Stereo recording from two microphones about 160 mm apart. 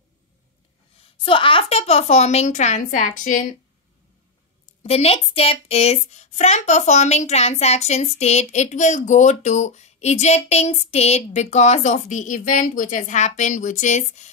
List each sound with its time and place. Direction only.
0.9 s speech: 35° left (ahead or behind); by 3.5 s 55° left (ahead or behind)
4.8 s speech: 40° left (ahead or behind)